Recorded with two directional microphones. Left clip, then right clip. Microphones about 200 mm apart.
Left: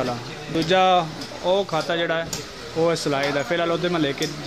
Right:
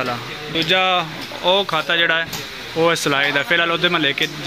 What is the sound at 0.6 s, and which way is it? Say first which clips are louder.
Speech: right 1 dB; 20° left (ahead or behind).